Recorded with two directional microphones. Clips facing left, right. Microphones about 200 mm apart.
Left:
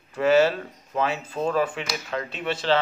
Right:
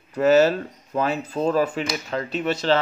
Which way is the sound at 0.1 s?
40° right (ahead or behind).